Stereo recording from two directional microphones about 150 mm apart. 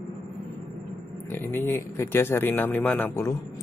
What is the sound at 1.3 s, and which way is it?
Speech, 15° left (ahead or behind).